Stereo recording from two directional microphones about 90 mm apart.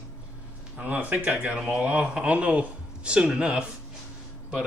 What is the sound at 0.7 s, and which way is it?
A man's voice, 15° right (ahead or behind).